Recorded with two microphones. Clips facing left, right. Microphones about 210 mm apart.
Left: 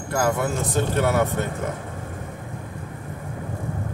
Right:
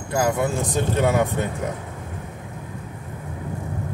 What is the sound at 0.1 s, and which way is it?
Speech, 15° right (ahead or behind).